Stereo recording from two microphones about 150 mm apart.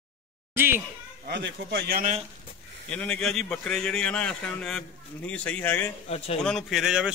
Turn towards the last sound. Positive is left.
turn(degrees=-5)  # may be behind; listen again after turning